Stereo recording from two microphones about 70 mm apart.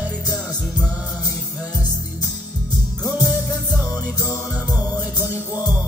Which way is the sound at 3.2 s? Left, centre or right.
Right.